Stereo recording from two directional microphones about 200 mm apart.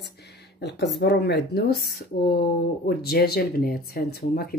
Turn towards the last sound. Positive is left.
turn(degrees=50)  # may be behind; listen again after turning